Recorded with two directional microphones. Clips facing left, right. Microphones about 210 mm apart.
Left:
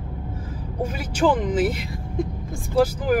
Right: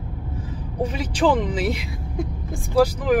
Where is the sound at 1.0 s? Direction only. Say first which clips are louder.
Right 1 dB; 5° left (ahead or behind).